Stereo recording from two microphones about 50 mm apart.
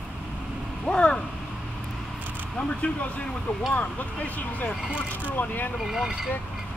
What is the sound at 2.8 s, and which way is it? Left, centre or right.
Speech, left.